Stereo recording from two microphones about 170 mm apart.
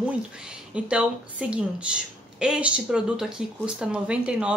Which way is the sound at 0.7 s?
5° right (ahead or behind).